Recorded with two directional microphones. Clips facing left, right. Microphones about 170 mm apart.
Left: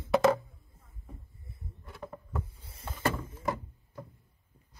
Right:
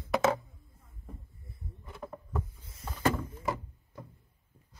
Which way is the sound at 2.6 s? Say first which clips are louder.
Left 1 dB; 30° left (ahead or behind).